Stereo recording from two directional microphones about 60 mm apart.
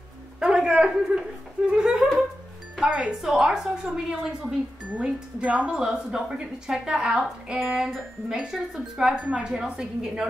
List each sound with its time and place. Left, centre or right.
0.4 s a sound: centre
1.7 s music: centre
3.1 s a woman's voice: centre